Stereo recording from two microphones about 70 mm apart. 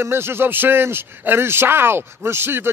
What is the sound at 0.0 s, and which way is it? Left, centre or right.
Speech, right.